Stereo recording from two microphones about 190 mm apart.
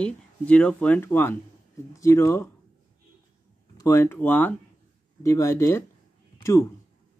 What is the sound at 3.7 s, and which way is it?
Speech, 15° left (ahead or behind).